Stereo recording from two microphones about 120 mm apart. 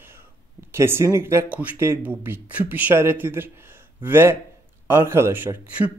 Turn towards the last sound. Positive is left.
turn(degrees=-15)  # may be behind; listen again after turning